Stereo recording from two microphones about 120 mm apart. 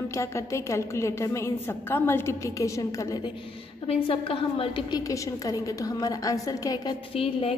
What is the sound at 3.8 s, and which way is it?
A woman's voice, 50° left (ahead or behind).